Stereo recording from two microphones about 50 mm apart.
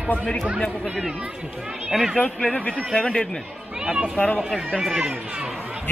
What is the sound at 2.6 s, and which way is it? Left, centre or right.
Speech, left.